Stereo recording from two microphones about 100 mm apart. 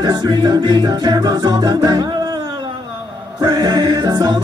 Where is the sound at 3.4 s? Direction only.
50° right (ahead or behind).